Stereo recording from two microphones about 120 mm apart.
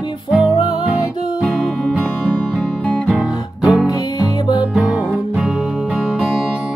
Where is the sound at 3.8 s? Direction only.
35° left (ahead or behind).